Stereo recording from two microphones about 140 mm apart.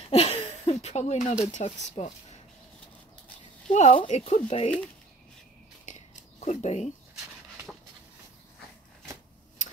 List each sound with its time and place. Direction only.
0.1 s a sound: 50° left (ahead or behind)
0.8 s speech: 55° left (ahead or behind)
3.7 s speech: 60° left (ahead or behind)
5.9 s scissors: 55° left (ahead or behind)
9.6 s tick-tock: 60° left (ahead or behind)